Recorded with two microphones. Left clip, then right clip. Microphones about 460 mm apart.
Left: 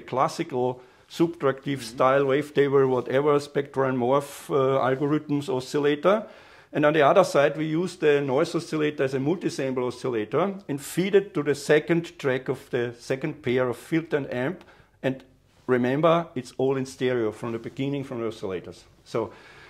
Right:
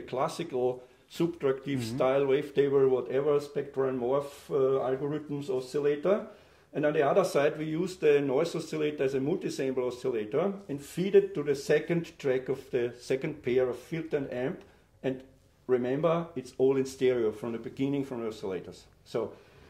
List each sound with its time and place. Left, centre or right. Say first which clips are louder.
0.0 s speech: left 7 dB; left
15.6 s speech: left 6 dB; left